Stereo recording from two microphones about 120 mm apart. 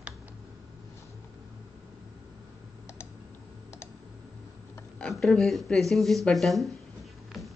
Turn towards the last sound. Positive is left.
turn(degrees=0)  # may be behind; listen again after turning